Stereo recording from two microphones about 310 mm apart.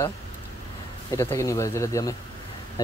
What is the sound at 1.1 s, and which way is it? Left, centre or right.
Speech, centre.